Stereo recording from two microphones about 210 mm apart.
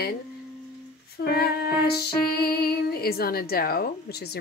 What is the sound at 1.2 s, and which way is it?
Female singing, 50° left (ahead or behind).